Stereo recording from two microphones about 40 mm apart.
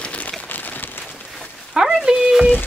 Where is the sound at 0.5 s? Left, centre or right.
Left.